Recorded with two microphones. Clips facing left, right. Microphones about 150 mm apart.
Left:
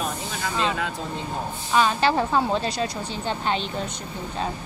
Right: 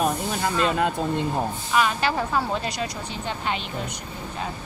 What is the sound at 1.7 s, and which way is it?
A woman's voice, 30° left (ahead or behind).